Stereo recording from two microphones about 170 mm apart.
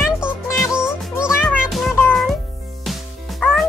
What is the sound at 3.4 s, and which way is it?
Music, 10° left (ahead or behind).